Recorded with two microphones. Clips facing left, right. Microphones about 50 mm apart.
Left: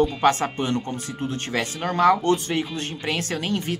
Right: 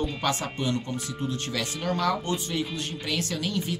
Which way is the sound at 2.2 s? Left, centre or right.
Left.